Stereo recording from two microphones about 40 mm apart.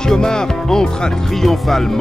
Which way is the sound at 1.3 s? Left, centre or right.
Centre.